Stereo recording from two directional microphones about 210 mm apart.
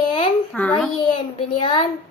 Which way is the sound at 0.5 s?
5° left (ahead or behind).